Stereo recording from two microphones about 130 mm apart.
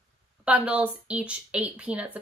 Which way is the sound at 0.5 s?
10° right (ahead or behind).